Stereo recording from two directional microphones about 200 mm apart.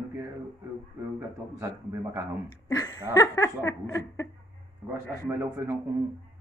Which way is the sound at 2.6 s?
20° left (ahead or behind).